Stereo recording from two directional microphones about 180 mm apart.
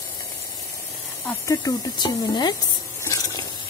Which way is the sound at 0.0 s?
15° left (ahead or behind).